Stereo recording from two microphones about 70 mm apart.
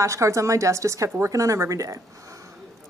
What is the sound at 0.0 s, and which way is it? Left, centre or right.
Speech, right.